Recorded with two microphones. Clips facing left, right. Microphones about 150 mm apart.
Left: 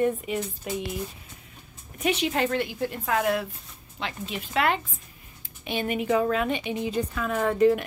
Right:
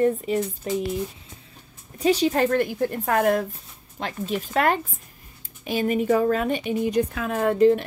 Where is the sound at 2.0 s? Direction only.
35° right (ahead or behind).